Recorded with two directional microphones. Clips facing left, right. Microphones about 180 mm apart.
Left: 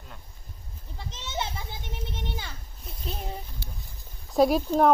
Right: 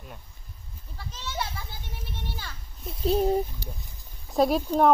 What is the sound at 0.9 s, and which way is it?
Children playing, 20° left (ahead or behind).